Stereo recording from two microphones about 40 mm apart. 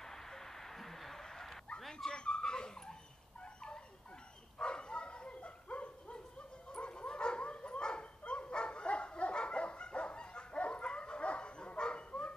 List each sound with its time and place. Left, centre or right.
0.0 s bow-wow: centre
1.8 s dog: centre
2.0 s dog: left
4.6 s bow-wow: left